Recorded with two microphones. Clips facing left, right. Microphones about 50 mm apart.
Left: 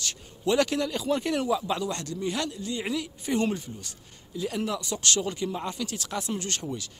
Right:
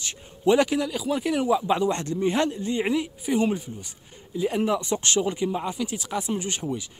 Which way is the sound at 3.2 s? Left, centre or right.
Centre.